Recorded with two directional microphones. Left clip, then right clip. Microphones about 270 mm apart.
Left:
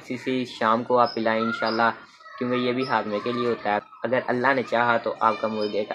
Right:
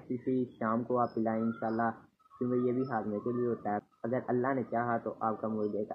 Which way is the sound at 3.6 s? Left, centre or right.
Centre.